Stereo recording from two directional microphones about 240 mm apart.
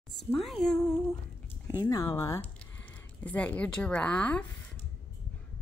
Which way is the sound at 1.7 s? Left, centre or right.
Centre.